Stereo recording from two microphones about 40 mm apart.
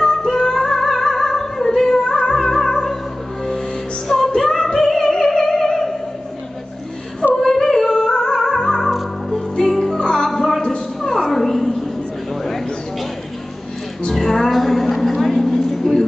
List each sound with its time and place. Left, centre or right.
0.0 s music: centre
4.1 s music: centre
7.3 s yodeling: centre
8.1 s music: centre
11.0 s a sound: centre
14.0 s music: centre